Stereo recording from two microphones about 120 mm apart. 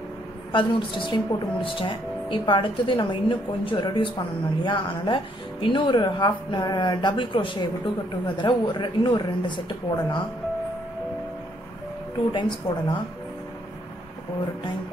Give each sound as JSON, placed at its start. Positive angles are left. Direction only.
{"t": 0.5, "sound": "speech", "side_deg": 40}
{"t": 12.3, "sound": "speech", "side_deg": 40}